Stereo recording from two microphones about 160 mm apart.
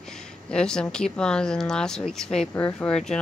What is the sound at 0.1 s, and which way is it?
Speech, 5° left (ahead or behind).